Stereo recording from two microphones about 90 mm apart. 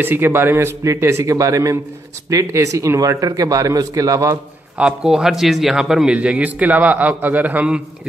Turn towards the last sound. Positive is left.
turn(degrees=-15)  # may be behind; listen again after turning